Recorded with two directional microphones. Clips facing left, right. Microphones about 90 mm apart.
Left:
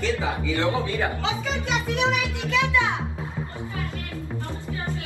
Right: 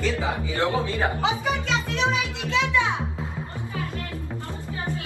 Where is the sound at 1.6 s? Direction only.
15° left (ahead or behind).